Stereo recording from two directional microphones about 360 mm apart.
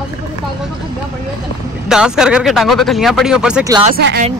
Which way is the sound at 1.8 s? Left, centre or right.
Centre.